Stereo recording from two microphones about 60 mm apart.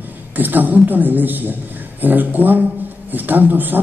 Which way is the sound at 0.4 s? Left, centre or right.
Right.